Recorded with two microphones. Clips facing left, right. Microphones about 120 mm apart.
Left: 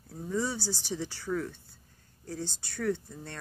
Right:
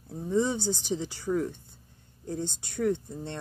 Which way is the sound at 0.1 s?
20° right (ahead or behind).